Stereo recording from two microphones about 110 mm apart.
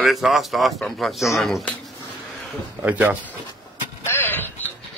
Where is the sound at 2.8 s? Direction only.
15° right (ahead or behind).